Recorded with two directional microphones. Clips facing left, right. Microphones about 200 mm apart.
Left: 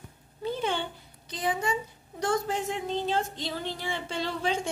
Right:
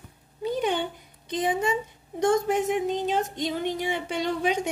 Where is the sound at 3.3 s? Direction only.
20° right (ahead or behind).